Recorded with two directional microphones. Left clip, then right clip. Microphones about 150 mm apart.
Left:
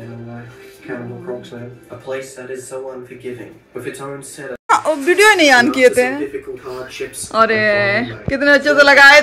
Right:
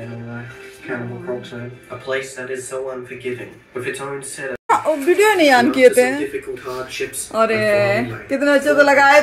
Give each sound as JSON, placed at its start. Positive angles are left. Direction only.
{"t": 4.6, "sound": "speech", "side_deg": -5}
{"t": 6.7, "sound": "speech", "side_deg": -5}